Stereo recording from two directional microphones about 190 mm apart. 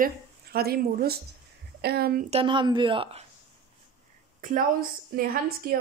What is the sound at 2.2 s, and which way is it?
Speech, 30° right (ahead or behind).